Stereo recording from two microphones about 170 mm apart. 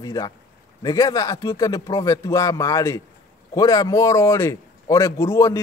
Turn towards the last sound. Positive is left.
turn(degrees=20)  # may be behind; listen again after turning